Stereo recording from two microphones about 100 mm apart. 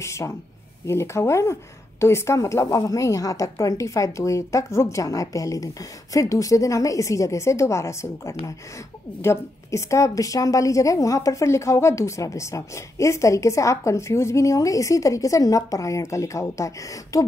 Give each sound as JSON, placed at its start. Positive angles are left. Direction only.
{"t": 0.0, "sound": "a woman's voice", "side_deg": 30}